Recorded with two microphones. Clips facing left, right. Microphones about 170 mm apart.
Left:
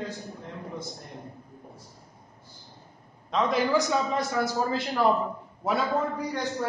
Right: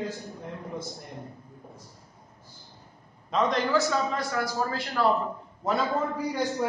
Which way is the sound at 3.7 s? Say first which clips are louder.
Left 1 dB; 15° left (ahead or behind).